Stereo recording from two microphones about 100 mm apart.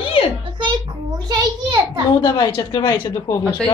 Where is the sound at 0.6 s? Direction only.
50° right (ahead or behind).